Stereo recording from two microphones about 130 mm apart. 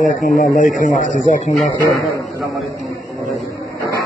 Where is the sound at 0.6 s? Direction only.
85° left.